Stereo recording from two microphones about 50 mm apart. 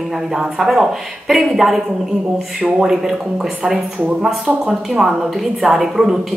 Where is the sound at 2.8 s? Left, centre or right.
Centre.